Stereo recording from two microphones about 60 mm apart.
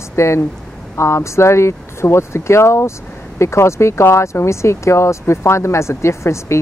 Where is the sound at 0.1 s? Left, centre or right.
Left.